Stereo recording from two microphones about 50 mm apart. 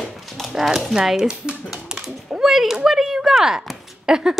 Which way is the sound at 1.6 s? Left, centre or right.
Centre.